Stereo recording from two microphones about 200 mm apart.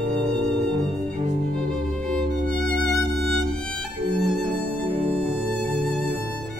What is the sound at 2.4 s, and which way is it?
Music, 45° right (ahead or behind).